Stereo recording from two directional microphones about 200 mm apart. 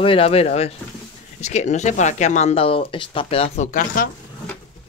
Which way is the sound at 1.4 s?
35° left (ahead or behind).